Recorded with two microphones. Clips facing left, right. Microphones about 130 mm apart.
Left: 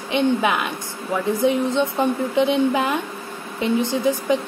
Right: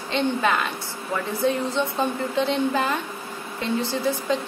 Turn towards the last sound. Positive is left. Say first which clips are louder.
# left 4 dB
turn(degrees=15)  # may be behind; listen again after turning